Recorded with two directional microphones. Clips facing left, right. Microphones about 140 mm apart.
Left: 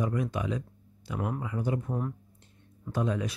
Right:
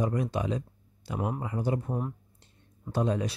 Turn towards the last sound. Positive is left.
turn(degrees=-35)  # may be behind; listen again after turning